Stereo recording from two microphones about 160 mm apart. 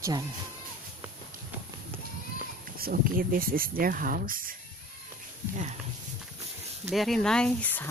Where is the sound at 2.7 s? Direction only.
65° right (ahead or behind).